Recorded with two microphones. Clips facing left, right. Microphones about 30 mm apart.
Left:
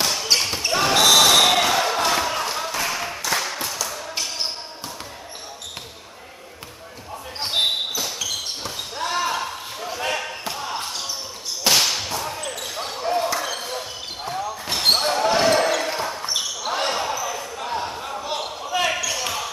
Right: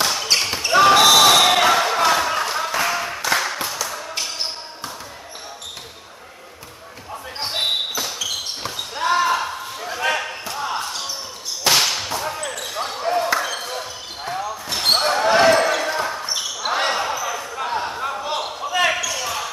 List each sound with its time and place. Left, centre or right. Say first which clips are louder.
0.0 s basketball bounce: right 1 dB; centre
1.0 s a sound: right 2 dB; centre
3.3 s music: right 3 dB; centre
7.3 s basketball bounce: left 2 dB; centre
8.6 s basketball bounce: right 9 dB; centre
10.8 s basketball bounce: right 2 dB; centre
11.6 s whip: right 1 dB; centre
12.7 s basketball bounce: right 2 dB; centre
14.7 s basketball bounce: even; centre
15.0 s basketball bounce: right 3 dB; centre
16.6 s basketball bounce: right 4 dB; right
19.0 s basketball bounce: right 1 dB; centre